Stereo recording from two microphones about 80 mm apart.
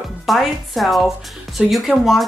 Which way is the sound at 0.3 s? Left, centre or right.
Centre.